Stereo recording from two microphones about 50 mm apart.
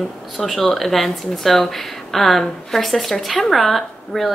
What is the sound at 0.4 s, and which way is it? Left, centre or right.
A woman's voice, centre.